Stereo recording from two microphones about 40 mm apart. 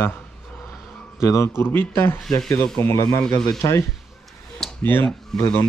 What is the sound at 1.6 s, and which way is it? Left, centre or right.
Speech, left.